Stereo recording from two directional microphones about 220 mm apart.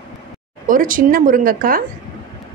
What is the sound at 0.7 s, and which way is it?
A woman's voice, 40° right (ahead or behind).